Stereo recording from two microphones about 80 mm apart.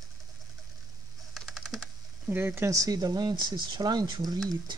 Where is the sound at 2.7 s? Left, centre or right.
Right.